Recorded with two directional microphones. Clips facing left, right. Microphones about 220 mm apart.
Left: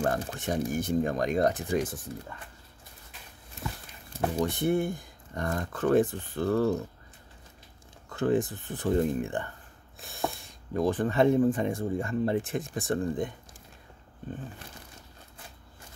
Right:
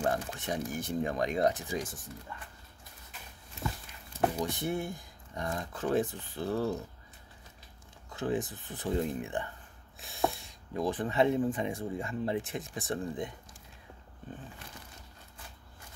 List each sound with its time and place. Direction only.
0.3 s speech: 45° left (ahead or behind)
4.4 s speech: 55° left (ahead or behind)
8.1 s speech: 55° left (ahead or behind)
10.7 s speech: 50° left (ahead or behind)